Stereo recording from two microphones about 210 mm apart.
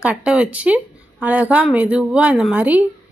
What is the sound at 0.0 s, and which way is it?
A woman's voice, 5° right (ahead or behind).